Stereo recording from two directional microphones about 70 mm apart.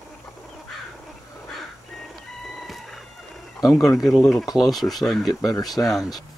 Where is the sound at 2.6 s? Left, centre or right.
Centre.